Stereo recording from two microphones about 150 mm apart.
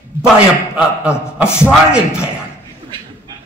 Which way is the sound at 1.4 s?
15° left (ahead or behind).